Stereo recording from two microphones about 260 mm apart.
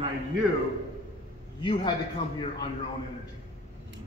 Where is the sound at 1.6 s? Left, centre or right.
Centre.